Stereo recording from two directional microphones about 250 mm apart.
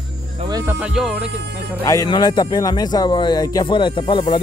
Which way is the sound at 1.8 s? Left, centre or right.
Centre.